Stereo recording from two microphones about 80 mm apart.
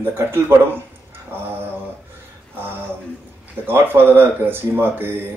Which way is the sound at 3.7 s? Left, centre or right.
Right.